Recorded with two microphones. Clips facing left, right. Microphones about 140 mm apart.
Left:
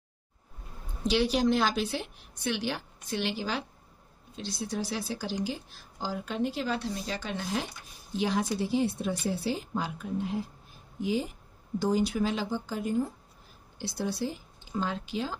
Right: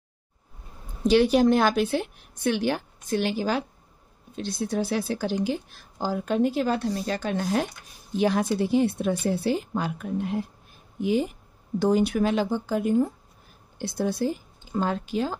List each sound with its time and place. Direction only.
1.0 s a woman's voice: 50° right (ahead or behind)